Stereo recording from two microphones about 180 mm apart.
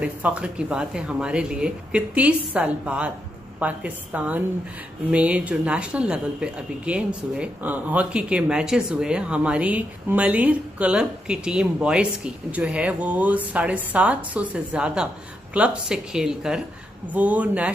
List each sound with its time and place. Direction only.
0.0 s a woman's voice: 5° right (ahead or behind)